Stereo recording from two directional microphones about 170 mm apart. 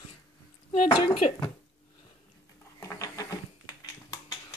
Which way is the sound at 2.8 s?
20° left (ahead or behind).